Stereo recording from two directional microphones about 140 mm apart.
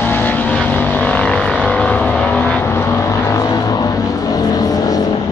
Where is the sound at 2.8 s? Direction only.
20° left (ahead or behind).